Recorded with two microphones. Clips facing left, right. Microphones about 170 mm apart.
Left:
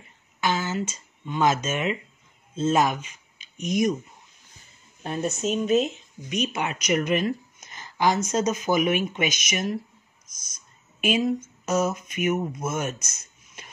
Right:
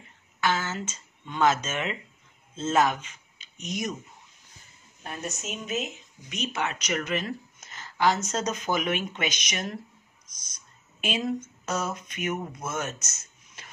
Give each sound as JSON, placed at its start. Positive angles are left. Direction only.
{"t": 0.4, "sound": "speech", "side_deg": 15}
{"t": 5.0, "sound": "speech", "side_deg": 30}
{"t": 6.2, "sound": "speech", "side_deg": 15}
{"t": 11.0, "sound": "speech", "side_deg": 10}